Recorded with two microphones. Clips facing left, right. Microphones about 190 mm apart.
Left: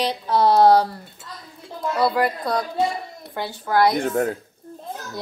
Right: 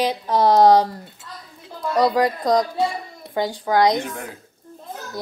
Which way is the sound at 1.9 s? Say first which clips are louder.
Right 3 dB; 40° right (ahead or behind).